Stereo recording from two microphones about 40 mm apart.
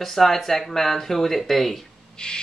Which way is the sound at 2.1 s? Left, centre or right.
Left.